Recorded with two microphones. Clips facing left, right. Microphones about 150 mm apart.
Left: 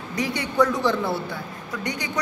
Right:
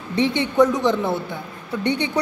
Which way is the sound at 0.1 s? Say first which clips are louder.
Right 7 dB; 25° right (ahead or behind).